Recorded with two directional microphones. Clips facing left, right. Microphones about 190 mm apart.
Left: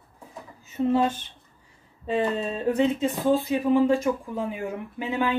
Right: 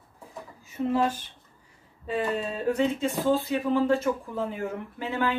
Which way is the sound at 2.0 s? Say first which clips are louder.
Left 3 dB; 25° left (ahead or behind).